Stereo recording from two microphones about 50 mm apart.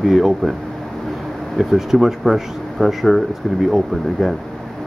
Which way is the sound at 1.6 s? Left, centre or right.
Centre.